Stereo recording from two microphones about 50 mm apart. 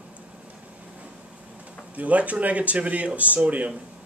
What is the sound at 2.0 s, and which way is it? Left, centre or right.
Speech, right.